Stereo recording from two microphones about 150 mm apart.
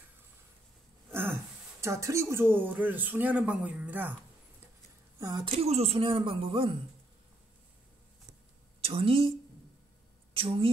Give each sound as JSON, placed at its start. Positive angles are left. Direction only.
{"t": 1.1, "sound": "speech", "side_deg": -15}
{"t": 5.2, "sound": "a woman's voice", "side_deg": -30}
{"t": 5.5, "sound": "speech", "side_deg": -40}
{"t": 8.8, "sound": "speech", "side_deg": -40}
{"t": 10.3, "sound": "speech", "side_deg": -40}